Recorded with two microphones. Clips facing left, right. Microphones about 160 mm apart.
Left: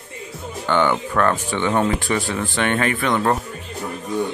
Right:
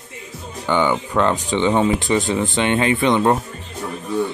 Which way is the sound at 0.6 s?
15° right (ahead or behind).